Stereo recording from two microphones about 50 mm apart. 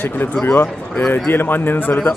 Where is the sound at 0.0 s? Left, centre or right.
Left.